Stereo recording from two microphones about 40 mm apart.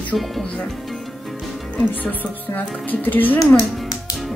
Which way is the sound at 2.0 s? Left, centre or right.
Left.